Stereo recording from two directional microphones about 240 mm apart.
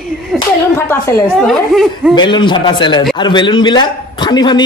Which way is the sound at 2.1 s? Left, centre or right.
Centre.